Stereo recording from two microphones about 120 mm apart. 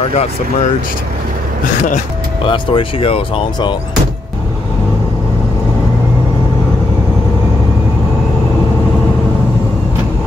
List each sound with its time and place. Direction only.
2.4 s speech: 45° left (ahead or behind)